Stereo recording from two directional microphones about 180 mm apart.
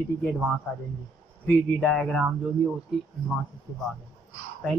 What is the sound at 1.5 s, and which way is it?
Speech, 5° left (ahead or behind).